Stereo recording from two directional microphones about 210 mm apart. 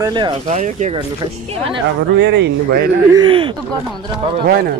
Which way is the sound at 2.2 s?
55° right (ahead or behind).